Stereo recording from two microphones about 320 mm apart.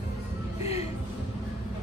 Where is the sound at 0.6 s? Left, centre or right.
Centre.